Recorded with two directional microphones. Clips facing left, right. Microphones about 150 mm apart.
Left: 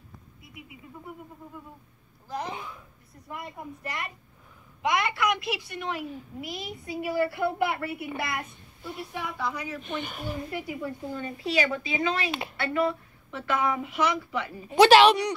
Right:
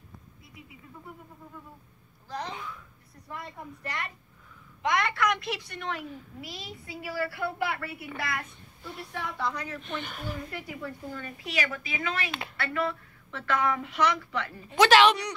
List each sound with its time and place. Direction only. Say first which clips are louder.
2.2 s a child's voice: left 2 dB; 10° left (ahead or behind)